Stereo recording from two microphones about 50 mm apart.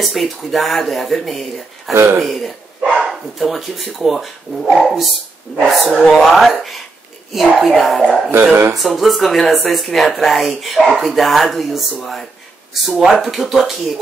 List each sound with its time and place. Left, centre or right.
0.0 s speech: centre
2.0 s speech: right
2.2 s speech: centre